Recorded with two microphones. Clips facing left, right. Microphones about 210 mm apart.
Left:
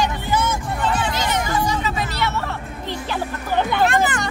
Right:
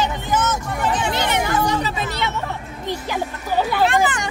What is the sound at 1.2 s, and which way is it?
Speech, 60° right (ahead or behind).